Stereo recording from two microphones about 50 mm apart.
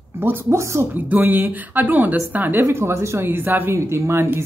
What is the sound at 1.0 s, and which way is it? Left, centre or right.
A woman's voice, right.